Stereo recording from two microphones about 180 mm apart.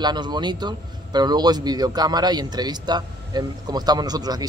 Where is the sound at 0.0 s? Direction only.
25° right (ahead or behind).